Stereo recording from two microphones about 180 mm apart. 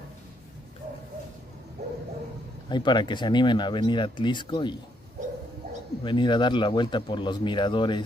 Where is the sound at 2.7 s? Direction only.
25° left (ahead or behind).